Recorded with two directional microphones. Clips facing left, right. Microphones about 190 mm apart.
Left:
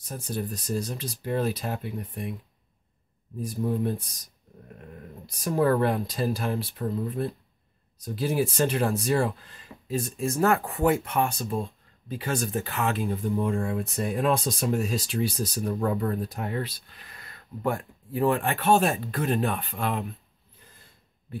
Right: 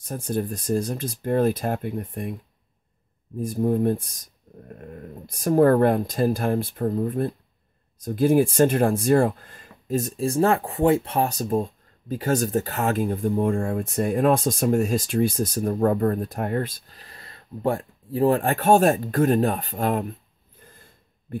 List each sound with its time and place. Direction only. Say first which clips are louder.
0.0 s speech: right 6 dB; 50° right (ahead or behind)
3.3 s speech: right 6 dB; 50° right (ahead or behind)